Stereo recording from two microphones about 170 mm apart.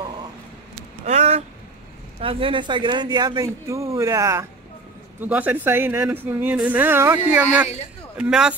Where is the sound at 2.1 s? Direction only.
30° right (ahead or behind).